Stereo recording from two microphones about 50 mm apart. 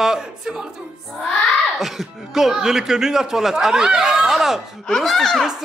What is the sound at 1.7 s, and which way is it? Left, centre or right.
Speech, centre.